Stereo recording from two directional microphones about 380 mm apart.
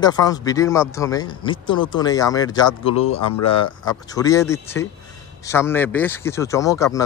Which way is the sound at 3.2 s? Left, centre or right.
Left.